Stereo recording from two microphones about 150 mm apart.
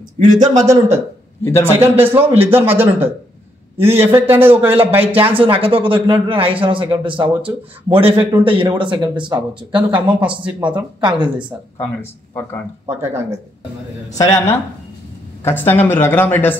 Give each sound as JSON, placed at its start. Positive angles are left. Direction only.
{"t": 0.2, "sound": "speech", "side_deg": -55}
{"t": 0.6, "sound": "a man's voice", "side_deg": -20}
{"t": 4.1, "sound": "a man's voice", "side_deg": -15}
{"t": 5.4, "sound": "speech", "side_deg": -35}
{"t": 11.8, "sound": "speech", "side_deg": 20}
{"t": 12.8, "sound": "a man's voice", "side_deg": -15}
{"t": 14.1, "sound": "speech", "side_deg": 25}